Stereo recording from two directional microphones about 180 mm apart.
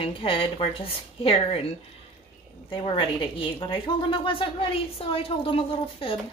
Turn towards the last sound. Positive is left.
turn(degrees=30)  # may be behind; listen again after turning